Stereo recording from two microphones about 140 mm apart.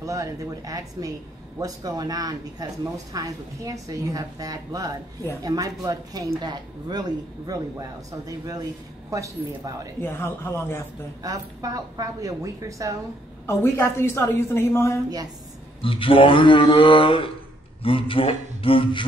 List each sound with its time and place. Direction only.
0.0 s speech: 25° right (ahead or behind)
10.0 s a woman's voice: 15° left (ahead or behind)
11.2 s speech: 25° right (ahead or behind)
13.5 s a woman's voice: 15° left (ahead or behind)
15.8 s speech: 40° left (ahead or behind)